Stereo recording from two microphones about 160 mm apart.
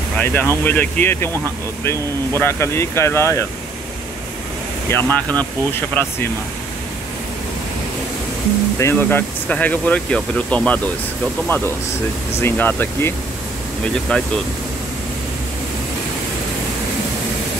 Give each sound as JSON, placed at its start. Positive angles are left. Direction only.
{"t": 0.2, "sound": "speech", "side_deg": 10}
{"t": 4.8, "sound": "speech", "side_deg": 15}
{"t": 8.7, "sound": "speech", "side_deg": 15}